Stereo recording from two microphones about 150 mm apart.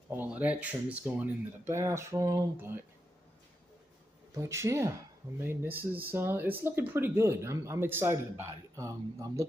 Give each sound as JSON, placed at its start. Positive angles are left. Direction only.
{"t": 0.1, "sound": "speech", "side_deg": -10}
{"t": 4.4, "sound": "speech", "side_deg": -20}